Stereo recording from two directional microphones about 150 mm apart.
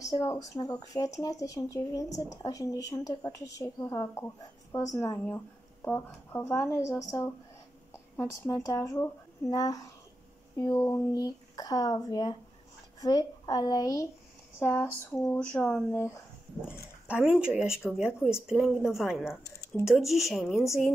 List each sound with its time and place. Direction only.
0.0 s speech: 20° left (ahead or behind)
17.1 s speech: 5° right (ahead or behind)
20.5 s speech: 20° left (ahead or behind)